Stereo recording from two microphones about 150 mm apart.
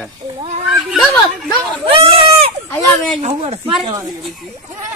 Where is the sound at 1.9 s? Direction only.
40° right (ahead or behind).